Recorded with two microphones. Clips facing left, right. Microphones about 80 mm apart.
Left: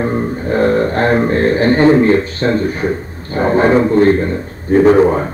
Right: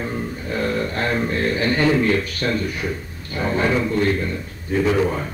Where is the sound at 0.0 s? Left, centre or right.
Left.